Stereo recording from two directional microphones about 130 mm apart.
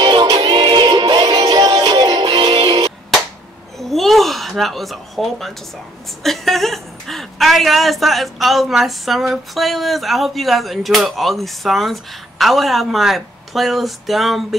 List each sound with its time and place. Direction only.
0.0 s music: 35° right (ahead or behind)
3.8 s a sound: centre (ahead or behind)
6.2 s a woman's voice: centre (ahead or behind)